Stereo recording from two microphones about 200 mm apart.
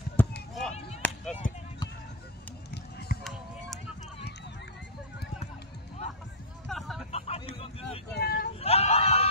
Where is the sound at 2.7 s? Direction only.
55° left (ahead or behind).